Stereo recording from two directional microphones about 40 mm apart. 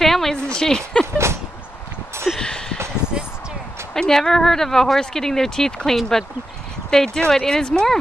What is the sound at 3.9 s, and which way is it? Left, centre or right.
Speech, centre.